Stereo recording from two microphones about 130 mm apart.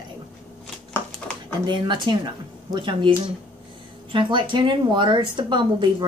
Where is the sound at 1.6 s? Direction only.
35° right (ahead or behind).